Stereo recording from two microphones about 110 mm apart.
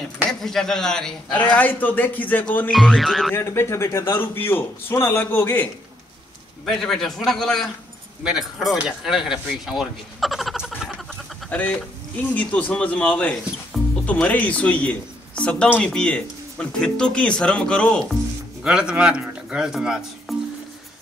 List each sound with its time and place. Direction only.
0.3 s a man's voice: 5° left (ahead or behind)
2.7 s speech: centre (ahead or behind)
3.3 s a man's voice: 25° left (ahead or behind)
6.6 s speech: 5° left (ahead or behind)
11.5 s a man's voice: 15° left (ahead or behind)
18.6 s speech: 10° right (ahead or behind)